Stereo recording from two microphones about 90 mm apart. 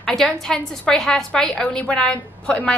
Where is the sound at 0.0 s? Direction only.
5° left (ahead or behind).